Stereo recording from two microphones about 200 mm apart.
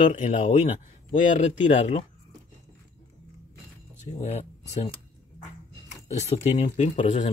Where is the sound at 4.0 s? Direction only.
35° left (ahead or behind).